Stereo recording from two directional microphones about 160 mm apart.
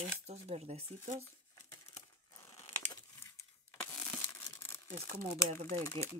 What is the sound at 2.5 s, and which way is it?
Crumpling, 15° left (ahead or behind).